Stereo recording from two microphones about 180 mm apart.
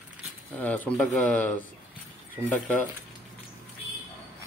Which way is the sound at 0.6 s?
5° left (ahead or behind).